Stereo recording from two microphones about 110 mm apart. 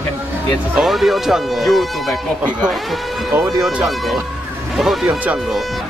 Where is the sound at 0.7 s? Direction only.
Centre (ahead or behind).